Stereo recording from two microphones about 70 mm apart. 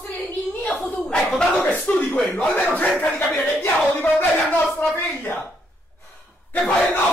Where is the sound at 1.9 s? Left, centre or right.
Left.